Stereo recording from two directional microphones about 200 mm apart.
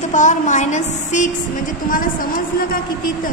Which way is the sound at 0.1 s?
40° left (ahead or behind).